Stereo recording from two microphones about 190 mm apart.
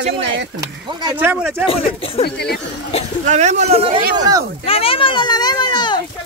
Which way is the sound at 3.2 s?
40° right (ahead or behind).